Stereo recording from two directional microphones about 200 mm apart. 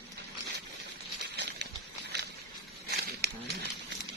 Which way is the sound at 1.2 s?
60° right (ahead or behind).